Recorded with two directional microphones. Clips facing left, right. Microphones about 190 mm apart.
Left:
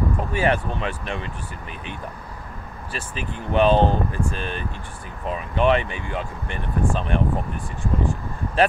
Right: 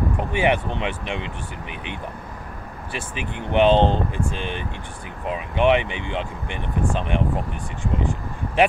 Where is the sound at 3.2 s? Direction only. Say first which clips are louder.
Right 1 dB; 20° right (ahead or behind).